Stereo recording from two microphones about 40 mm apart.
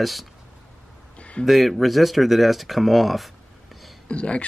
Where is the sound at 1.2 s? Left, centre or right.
Left.